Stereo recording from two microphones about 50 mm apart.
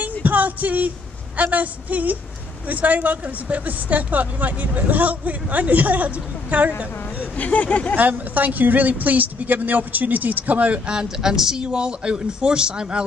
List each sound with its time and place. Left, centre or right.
0.0 s a sound: right
2.7 s speech: right
7.3 s speech: left
7.9 s speech: right
10.9 s speech: centre